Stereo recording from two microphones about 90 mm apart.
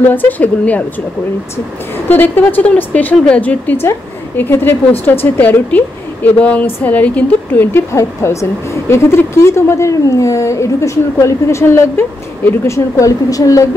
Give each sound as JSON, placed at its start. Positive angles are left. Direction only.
{"t": 0.1, "sound": "a woman's voice", "side_deg": 20}
{"t": 2.0, "sound": "a woman's voice", "side_deg": 20}
{"t": 7.9, "sound": "a woman's voice", "side_deg": 35}